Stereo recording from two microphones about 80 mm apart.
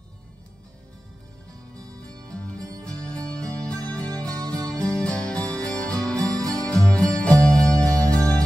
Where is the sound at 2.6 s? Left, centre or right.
Right.